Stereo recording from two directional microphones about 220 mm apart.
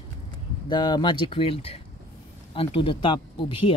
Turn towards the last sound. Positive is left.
turn(degrees=25)  # may be behind; listen again after turning